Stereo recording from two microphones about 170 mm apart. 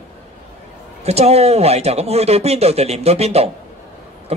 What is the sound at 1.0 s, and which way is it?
A man's voice, 40° right (ahead or behind).